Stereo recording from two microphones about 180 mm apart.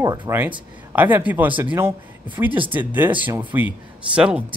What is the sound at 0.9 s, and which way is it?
Speech, 10° right (ahead or behind).